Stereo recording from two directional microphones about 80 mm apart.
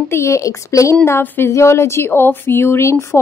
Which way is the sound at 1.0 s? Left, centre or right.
Left.